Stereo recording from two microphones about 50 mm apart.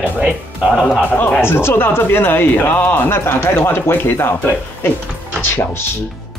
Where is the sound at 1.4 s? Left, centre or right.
Left.